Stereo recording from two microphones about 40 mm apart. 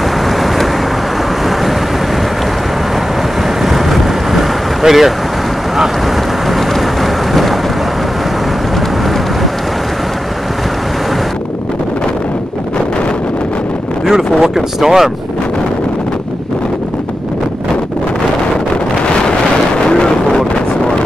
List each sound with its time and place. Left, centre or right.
3.6 s boat: centre
6.5 s vehicle: centre
14.4 s speech: centre
19.9 s vehicle: centre